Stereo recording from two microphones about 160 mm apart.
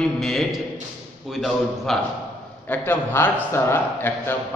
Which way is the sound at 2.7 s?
15° left (ahead or behind).